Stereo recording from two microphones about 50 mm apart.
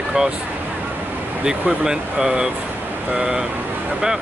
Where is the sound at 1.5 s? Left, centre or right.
Centre.